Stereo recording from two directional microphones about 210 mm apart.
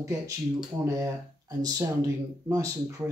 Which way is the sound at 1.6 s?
15° right (ahead or behind).